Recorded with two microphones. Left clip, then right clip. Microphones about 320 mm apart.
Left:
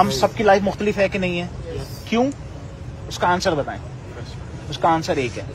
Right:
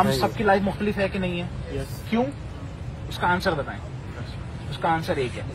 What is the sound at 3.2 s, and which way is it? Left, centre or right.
Speech, left.